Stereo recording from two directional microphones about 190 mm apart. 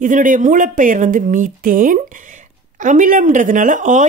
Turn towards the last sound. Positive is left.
turn(degrees=-40)  # may be behind; listen again after turning